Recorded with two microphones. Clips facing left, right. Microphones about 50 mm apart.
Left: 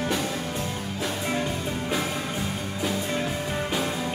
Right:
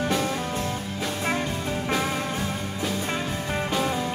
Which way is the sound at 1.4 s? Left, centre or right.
Centre.